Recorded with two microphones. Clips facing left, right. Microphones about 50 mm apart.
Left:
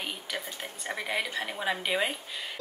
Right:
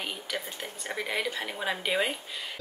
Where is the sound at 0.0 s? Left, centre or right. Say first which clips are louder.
Right 1 dB; centre.